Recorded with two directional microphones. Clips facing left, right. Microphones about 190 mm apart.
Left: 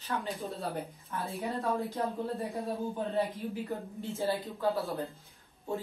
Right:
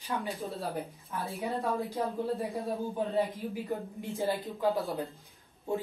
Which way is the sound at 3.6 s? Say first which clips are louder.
Right 1 dB; 15° right (ahead or behind).